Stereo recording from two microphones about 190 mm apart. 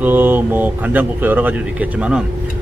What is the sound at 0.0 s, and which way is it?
Speech, 10° right (ahead or behind).